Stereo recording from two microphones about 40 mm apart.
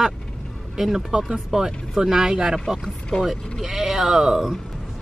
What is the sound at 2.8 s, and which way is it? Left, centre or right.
Speech, centre.